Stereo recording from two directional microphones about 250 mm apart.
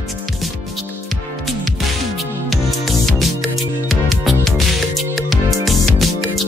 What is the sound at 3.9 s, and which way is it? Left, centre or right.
Music, centre.